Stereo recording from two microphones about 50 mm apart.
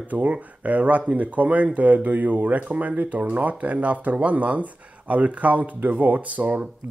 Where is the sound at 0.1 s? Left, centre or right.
Right.